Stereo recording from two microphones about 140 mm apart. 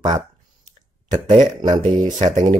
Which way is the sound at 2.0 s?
65° right (ahead or behind).